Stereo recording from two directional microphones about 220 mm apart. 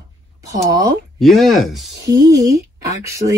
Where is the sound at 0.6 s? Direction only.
15° right (ahead or behind).